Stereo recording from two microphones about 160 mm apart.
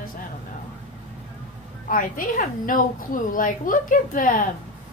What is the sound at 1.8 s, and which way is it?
A woman's voice, 60° left (ahead or behind).